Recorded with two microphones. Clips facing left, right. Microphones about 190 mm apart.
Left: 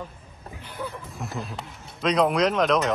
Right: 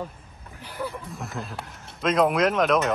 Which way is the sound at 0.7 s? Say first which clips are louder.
Right 2 dB; 10° right (ahead or behind).